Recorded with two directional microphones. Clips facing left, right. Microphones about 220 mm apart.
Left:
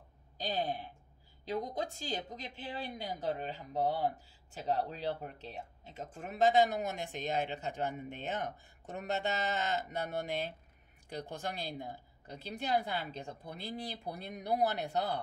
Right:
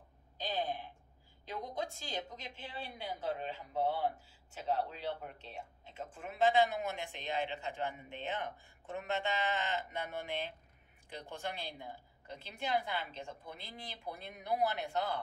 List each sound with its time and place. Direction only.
0.4 s speech: 35° left (ahead or behind)